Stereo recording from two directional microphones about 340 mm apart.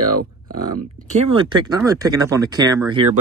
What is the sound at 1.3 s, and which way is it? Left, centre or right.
Speech, centre.